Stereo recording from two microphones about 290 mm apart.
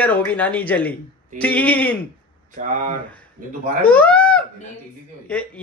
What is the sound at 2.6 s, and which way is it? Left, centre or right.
Speech, right.